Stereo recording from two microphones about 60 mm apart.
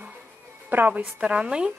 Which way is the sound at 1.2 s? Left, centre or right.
Centre.